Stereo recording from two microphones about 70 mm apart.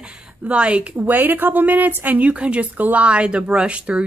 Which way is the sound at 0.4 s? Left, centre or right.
Centre.